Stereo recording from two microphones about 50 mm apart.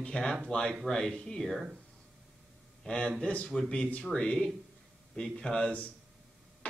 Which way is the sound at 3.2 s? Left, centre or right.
Left.